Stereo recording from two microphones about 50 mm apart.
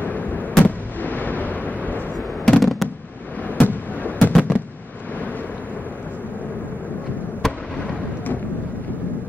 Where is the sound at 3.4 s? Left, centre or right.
Left.